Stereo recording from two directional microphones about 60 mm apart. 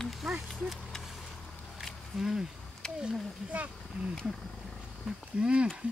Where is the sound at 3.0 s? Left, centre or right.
Right.